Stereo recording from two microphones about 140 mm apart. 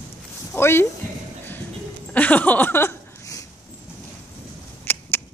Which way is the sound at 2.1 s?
10° left (ahead or behind).